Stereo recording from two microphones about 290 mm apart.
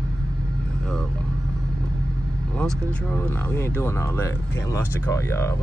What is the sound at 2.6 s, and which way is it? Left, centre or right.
Speech, centre.